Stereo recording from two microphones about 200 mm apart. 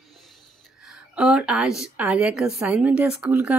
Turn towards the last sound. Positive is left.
turn(degrees=-10)  # may be behind; listen again after turning